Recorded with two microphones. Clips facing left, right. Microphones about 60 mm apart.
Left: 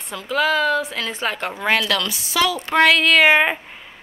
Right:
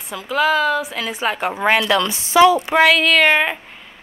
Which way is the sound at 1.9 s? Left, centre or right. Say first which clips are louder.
Right 7 dB; right.